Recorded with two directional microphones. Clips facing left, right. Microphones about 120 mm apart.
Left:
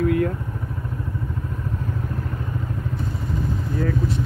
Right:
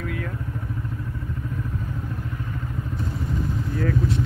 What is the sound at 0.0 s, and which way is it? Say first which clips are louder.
Vehicle: left 11 dB; 45° left (ahead or behind).